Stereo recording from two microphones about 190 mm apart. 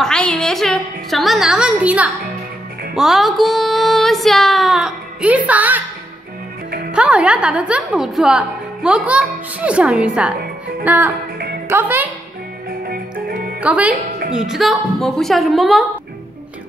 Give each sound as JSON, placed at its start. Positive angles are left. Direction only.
{"t": 0.0, "sound": "a sound", "side_deg": 5}
{"t": 3.0, "sound": "a woman's voice", "side_deg": 0}
{"t": 6.9, "sound": "a woman's voice", "side_deg": -5}
{"t": 10.8, "sound": "music", "side_deg": -10}
{"t": 11.7, "sound": "a woman's voice", "side_deg": -10}
{"t": 12.8, "sound": "music", "side_deg": -50}
{"t": 13.6, "sound": "a woman's voice", "side_deg": -5}